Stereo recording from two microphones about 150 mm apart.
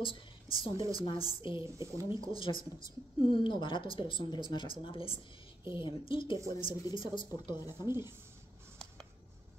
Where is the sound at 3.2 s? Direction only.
35° left (ahead or behind).